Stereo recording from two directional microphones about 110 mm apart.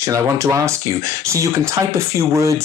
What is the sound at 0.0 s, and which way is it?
Speech, 30° right (ahead or behind).